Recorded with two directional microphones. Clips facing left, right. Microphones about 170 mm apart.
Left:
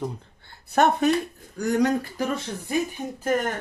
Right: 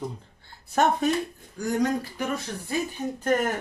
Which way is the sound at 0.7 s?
65° left (ahead or behind).